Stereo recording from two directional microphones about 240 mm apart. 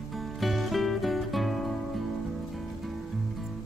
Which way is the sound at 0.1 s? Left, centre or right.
Centre.